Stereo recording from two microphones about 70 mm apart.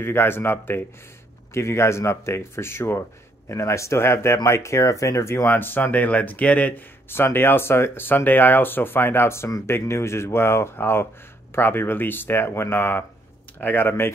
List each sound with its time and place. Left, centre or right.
0.0 s speech: left
7.1 s speech: left